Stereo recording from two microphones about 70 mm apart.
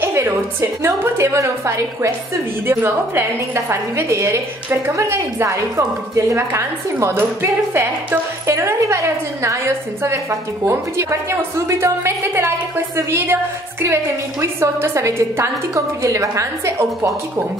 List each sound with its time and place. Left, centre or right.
0.0 s a woman's voice: right
2.6 s a woman's voice: right